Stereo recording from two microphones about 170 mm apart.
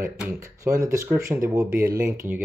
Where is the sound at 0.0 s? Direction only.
15° right (ahead or behind).